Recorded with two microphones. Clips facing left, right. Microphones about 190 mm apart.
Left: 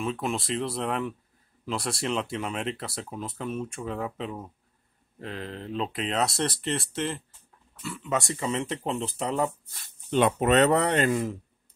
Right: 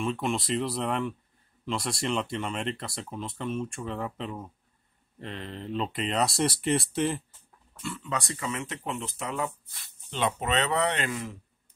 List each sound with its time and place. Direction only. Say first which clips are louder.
0.0 s speech: even; centre (ahead or behind)
6.4 s speech: right 3 dB; 10° right (ahead or behind)
7.8 s speech: even; 10° left (ahead or behind)
8.1 s speech: left 5 dB; 25° left (ahead or behind)
9.7 s speech: left 12 dB; 50° left (ahead or behind)